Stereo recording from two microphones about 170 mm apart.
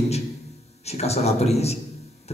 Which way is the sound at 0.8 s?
40° left (ahead or behind).